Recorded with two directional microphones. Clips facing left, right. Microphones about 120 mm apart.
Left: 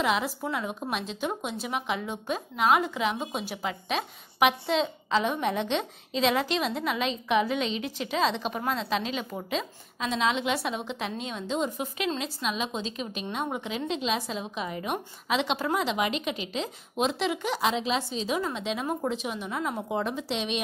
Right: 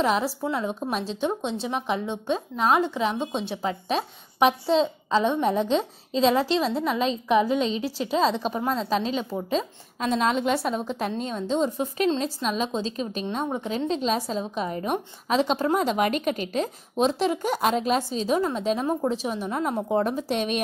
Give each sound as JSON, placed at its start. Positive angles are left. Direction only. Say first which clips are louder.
{"t": 0.0, "sound": "a woman's voice", "louder": "right 4 dB", "side_deg": -35}